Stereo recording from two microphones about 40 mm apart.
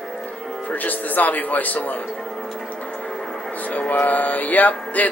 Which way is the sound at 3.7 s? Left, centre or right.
Left.